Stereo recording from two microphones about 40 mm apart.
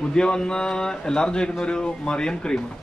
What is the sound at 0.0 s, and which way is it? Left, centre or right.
A man's voice, left.